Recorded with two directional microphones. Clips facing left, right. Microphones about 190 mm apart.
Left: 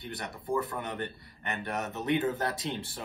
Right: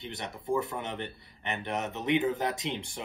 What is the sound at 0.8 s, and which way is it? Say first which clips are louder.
A man's voice: left 1 dB; 20° right (ahead or behind).